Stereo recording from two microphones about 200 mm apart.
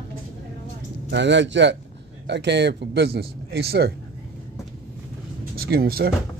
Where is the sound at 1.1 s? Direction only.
65° right (ahead or behind).